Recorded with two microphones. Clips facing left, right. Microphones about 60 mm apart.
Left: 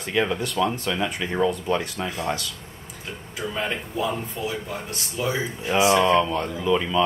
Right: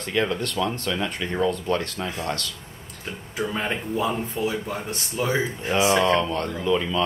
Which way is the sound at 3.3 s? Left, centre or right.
Centre.